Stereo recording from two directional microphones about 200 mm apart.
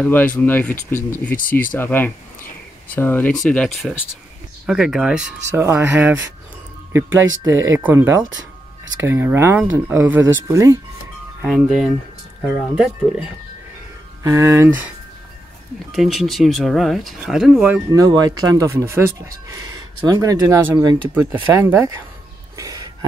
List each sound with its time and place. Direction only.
0.0 s speech: 10° left (ahead or behind); by 10.8 s 15° right (ahead or behind)
11.4 s speech: centre (ahead or behind)
14.2 s speech: 15° right (ahead or behind)
15.9 s speech: centre (ahead or behind)
17.9 s speech: 20° right (ahead or behind)
22.6 s a sound: 20° right (ahead or behind)